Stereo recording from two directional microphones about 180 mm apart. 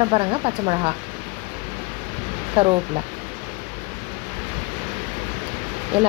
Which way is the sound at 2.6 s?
25° right (ahead or behind).